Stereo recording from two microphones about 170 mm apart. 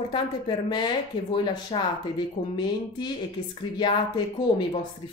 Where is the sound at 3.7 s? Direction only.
25° left (ahead or behind).